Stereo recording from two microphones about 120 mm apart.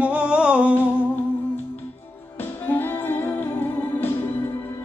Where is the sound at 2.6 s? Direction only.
15° left (ahead or behind).